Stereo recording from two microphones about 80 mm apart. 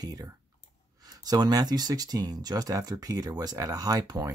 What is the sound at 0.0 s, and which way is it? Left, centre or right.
Speech, right.